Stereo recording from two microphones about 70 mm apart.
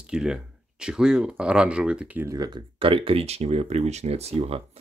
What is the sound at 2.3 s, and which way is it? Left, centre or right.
Speech, right.